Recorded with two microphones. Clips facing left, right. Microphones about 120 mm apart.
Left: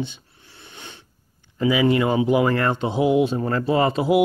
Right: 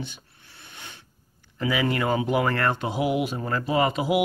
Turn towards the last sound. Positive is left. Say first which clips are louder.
# left 4 dB
turn(degrees=35)  # may be behind; listen again after turning